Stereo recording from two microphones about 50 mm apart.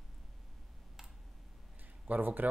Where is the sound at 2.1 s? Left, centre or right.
Right.